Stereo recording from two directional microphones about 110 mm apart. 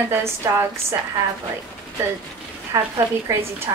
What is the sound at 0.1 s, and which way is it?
Speech, 20° right (ahead or behind).